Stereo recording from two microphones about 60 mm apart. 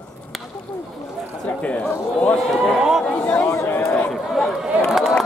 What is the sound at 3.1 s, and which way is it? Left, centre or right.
Chatter, left.